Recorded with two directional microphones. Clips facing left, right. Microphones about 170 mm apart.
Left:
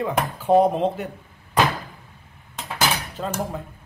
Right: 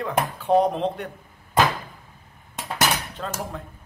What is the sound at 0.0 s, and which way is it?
Speech, 5° left (ahead or behind).